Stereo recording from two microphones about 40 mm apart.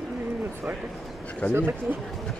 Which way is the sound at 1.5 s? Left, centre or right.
Right.